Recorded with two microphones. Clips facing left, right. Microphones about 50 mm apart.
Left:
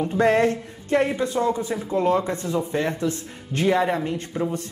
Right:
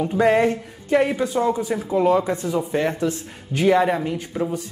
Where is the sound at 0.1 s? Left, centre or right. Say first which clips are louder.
Right 1 dB; centre.